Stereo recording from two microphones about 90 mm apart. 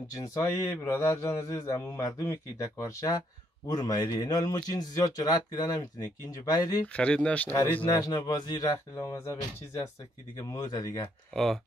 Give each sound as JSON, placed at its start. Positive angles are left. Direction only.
{"t": 0.1, "sound": "a man's voice", "side_deg": 40}
{"t": 0.7, "sound": "a man's voice", "side_deg": 25}
{"t": 6.9, "sound": "speech", "side_deg": 15}
{"t": 7.9, "sound": "speech", "side_deg": 45}
{"t": 8.9, "sound": "a man's voice", "side_deg": 30}
{"t": 10.5, "sound": "speech", "side_deg": 40}
{"t": 11.3, "sound": "speech", "side_deg": 5}